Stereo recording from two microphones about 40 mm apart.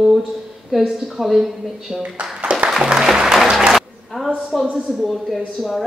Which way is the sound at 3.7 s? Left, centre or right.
Centre.